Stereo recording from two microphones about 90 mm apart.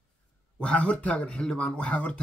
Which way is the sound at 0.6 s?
10° left (ahead or behind).